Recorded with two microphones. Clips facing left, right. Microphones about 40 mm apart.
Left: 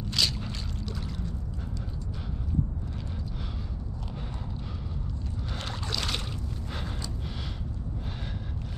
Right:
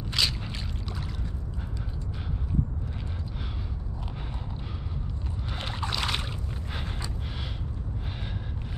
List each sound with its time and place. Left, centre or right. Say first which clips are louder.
0.2 s boat: right 1 dB; centre
5.7 s boat: right 3 dB; right